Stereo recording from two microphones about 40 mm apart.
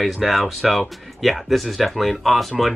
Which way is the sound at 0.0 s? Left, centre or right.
Centre.